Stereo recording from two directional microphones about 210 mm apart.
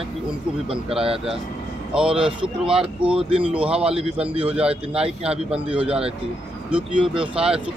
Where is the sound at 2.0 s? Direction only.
5° right (ahead or behind).